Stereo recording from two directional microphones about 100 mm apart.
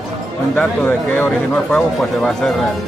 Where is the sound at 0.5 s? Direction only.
15° left (ahead or behind).